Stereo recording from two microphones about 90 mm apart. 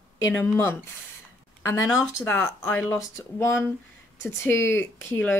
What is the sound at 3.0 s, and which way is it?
Speech, 30° left (ahead or behind).